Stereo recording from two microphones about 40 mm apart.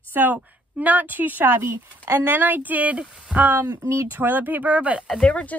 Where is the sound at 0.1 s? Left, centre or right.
Right.